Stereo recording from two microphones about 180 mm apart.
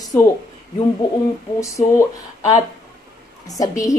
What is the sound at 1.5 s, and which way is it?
Speech, 15° left (ahead or behind).